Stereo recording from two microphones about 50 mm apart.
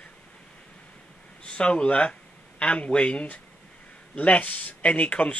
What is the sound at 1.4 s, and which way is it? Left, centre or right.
Speech, left.